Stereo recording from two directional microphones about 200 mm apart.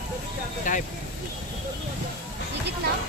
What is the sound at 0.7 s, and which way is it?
Speech, 40° left (ahead or behind).